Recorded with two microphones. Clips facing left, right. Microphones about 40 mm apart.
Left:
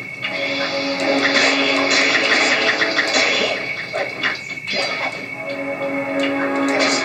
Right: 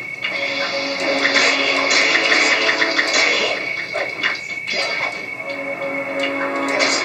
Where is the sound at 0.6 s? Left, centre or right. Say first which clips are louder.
Left 1 dB; centre.